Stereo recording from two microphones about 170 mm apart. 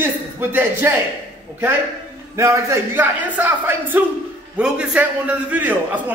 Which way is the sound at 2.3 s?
15° right (ahead or behind).